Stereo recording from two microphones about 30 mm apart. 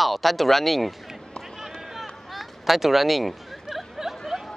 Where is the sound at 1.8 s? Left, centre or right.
Centre.